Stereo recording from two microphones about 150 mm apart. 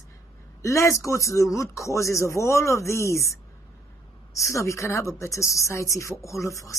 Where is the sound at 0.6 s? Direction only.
20° left (ahead or behind).